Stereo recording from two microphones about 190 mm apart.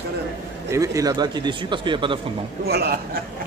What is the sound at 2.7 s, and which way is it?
Speech, 55° right (ahead or behind).